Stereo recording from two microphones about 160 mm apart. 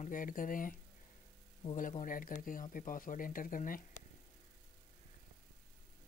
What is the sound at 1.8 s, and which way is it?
Speech, 55° left (ahead or behind).